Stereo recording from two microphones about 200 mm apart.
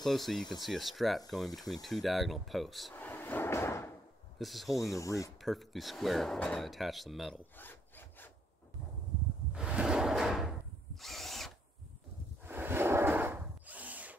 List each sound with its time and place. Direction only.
0.0 s speech: centre (ahead or behind)
4.4 s speech: centre (ahead or behind)
4.8 s speech: 15° left (ahead or behind)
5.4 s speech: centre (ahead or behind)
7.5 s wood: 10° left (ahead or behind)
9.5 s a sound: 5° right (ahead or behind)
11.0 s drill: centre (ahead or behind)
12.4 s a sound: 10° right (ahead or behind)